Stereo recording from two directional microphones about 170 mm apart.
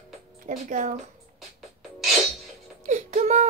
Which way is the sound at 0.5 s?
45° right (ahead or behind).